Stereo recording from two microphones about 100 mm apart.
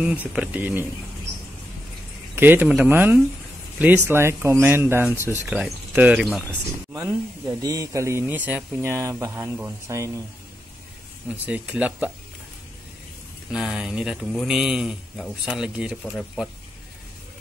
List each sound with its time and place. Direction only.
0.0 s speech: 10° right (ahead or behind)
2.3 s speech: 20° right (ahead or behind)
5.5 s speech: 15° right (ahead or behind)
6.9 s speech: 25° right (ahead or behind)
8.3 s speech: 15° right (ahead or behind)
11.2 s speech: 15° right (ahead or behind)
13.5 s speech: 5° right (ahead or behind)